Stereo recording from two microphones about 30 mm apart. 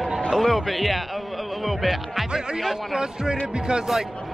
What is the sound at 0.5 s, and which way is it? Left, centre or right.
Speech, centre.